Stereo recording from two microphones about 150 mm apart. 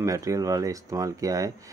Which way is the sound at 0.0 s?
20° right (ahead or behind).